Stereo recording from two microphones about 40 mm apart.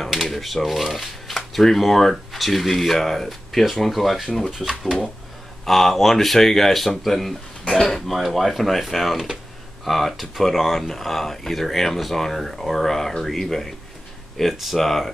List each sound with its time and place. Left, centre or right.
0.1 s speech: centre
5.7 s speech: centre
8.4 s speech: centre